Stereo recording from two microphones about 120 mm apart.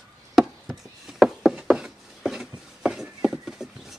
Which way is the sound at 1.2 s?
5° right (ahead or behind).